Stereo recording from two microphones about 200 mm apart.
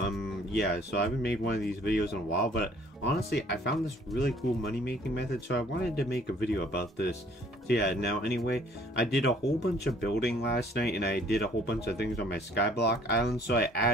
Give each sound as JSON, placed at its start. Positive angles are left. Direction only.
{"t": 0.2, "sound": "speech", "side_deg": 60}
{"t": 4.8, "sound": "speech", "side_deg": 55}